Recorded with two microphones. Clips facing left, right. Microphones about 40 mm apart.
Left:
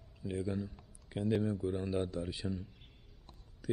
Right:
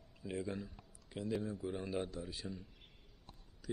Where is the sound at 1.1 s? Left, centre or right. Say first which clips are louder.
Left 6 dB; centre.